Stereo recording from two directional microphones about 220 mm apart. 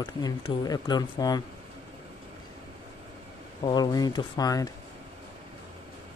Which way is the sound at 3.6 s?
20° left (ahead or behind).